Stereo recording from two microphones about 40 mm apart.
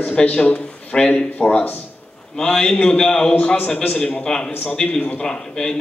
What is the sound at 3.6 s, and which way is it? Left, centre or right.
Speech, left.